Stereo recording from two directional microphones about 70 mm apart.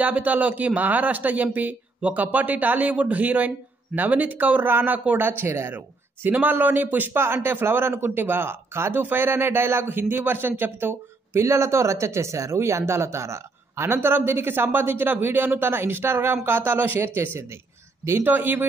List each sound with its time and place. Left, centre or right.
0.0 s speech: right